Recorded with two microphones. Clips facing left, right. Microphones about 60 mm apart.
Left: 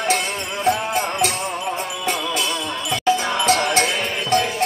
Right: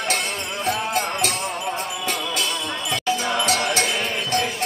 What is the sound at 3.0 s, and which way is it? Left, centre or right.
Music, left.